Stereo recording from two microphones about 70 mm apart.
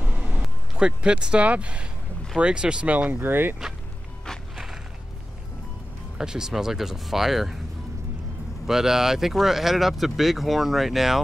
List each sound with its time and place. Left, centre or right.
0.7 s speech: centre
3.2 s speech: right
6.1 s speech: centre
8.6 s speech: centre